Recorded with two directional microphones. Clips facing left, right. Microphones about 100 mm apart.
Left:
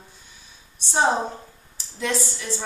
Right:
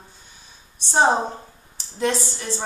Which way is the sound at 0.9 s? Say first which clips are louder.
Right 3 dB; 35° right (ahead or behind).